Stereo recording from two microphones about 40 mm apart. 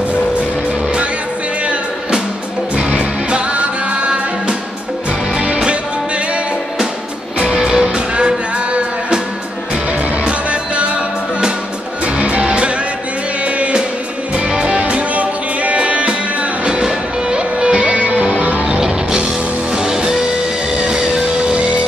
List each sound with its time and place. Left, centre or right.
2.7 s music: right
5.7 s music: right
10.2 s music: right
12.2 s music: right
14.8 s music: right
18.0 s music: right
18.8 s music: centre
21.5 s music: right